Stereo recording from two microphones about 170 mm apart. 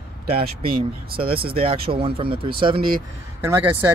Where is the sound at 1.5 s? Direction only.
35° right (ahead or behind).